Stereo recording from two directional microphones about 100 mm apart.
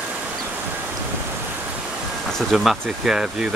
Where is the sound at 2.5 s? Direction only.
Centre (ahead or behind).